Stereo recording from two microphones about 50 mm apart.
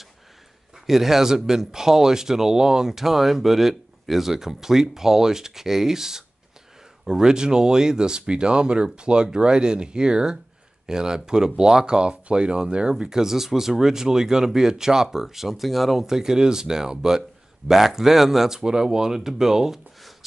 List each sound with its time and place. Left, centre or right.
0.8 s speech: centre